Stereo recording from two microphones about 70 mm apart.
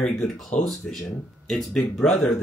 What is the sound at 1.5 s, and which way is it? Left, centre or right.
Speech, centre.